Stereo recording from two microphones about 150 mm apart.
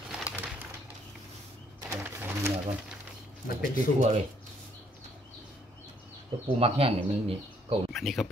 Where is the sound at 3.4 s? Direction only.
70° left (ahead or behind).